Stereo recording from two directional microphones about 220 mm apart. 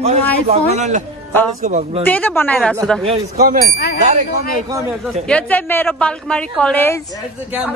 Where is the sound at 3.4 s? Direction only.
40° right (ahead or behind).